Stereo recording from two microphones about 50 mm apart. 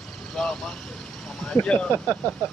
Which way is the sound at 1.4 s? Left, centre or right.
Centre.